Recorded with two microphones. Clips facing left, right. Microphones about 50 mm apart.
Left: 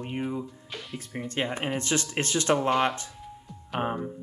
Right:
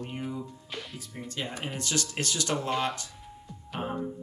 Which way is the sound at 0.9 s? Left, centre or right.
Left.